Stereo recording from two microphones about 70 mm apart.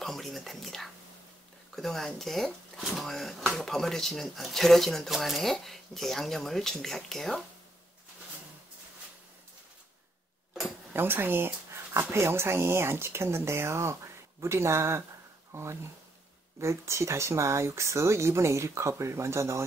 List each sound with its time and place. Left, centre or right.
0.0 s speech: centre
10.9 s dog: right
12.0 s speech: right